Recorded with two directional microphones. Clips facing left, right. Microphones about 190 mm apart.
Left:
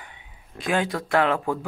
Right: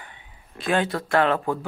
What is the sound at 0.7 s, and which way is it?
Speech, 5° left (ahead or behind).